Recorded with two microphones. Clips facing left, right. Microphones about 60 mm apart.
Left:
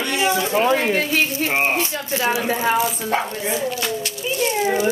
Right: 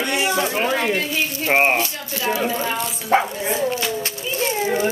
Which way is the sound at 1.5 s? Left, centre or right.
Right.